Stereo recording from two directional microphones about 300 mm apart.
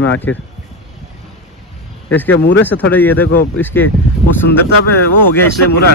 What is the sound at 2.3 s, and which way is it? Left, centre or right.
Speech, left.